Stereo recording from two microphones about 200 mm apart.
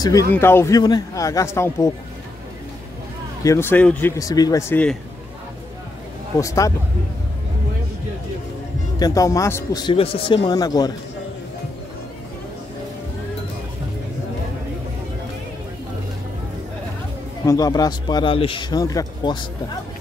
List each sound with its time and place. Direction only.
0.0 s a man's voice: 15° left (ahead or behind)
3.4 s a man's voice: 10° left (ahead or behind)
6.4 s a man's voice: 15° left (ahead or behind)
9.0 s speech: 15° left (ahead or behind)
17.5 s speech: 20° left (ahead or behind)